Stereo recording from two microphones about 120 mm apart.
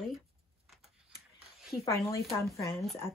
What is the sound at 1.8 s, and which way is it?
Speech, 25° left (ahead or behind).